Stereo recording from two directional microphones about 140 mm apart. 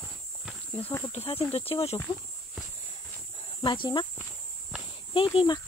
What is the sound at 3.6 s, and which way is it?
Speech, 35° left (ahead or behind).